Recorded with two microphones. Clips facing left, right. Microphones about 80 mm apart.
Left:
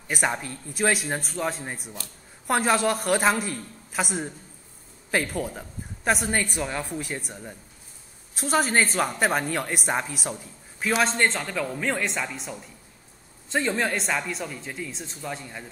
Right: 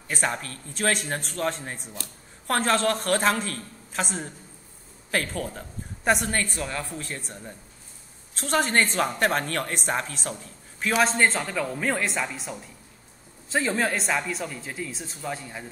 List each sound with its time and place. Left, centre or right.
0.1 s a woman's voice: centre
6.0 s speech: centre
6.3 s a woman's voice: centre
10.8 s speech: centre